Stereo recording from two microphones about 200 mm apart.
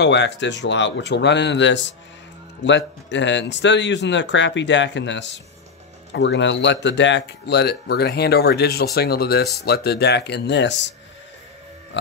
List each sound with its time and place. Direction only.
0.0 s speech: 60° left (ahead or behind)